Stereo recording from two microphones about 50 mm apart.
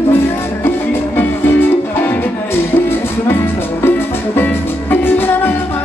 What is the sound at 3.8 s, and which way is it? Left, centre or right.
Music, left.